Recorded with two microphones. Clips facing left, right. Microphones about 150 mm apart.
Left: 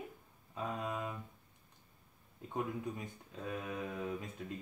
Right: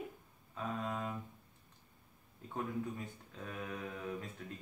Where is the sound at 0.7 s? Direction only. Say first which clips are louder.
Right 1 dB; 15° left (ahead or behind).